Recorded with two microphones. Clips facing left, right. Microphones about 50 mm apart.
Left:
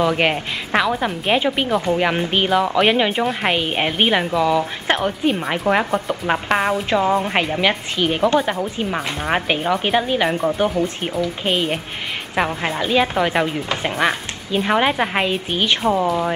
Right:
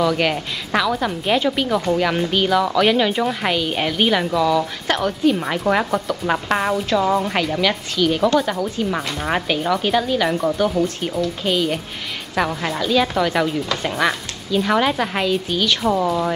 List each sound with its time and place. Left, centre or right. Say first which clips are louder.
0.0 s speech: left 1 dB; left
4.3 s speech: even; centre
5.7 s speech: left 1 dB; centre
6.0 s speech: even; left
7.3 s speech: left 1 dB; left